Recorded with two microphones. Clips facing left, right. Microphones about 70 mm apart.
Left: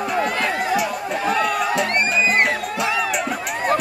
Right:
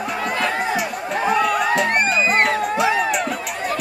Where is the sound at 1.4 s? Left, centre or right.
Centre.